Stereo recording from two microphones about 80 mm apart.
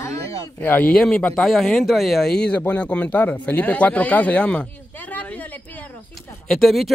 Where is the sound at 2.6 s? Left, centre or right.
Left.